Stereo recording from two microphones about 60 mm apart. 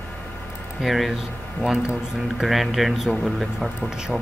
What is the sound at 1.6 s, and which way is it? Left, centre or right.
Speech, centre.